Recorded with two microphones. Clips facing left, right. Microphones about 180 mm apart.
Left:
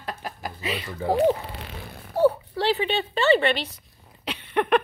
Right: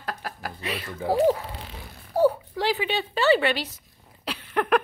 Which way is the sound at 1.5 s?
65° left (ahead or behind).